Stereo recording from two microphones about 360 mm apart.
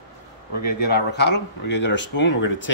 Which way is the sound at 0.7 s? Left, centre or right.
Left.